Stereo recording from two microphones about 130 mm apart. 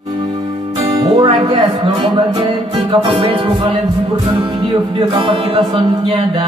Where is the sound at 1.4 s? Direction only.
40° right (ahead or behind).